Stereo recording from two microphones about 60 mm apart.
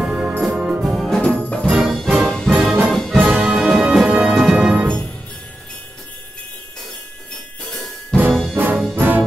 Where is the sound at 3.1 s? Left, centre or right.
Right.